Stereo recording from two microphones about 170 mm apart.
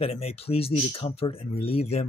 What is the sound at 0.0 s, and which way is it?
Speech, 35° left (ahead or behind).